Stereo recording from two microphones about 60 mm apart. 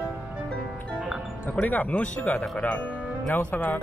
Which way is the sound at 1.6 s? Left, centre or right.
Left.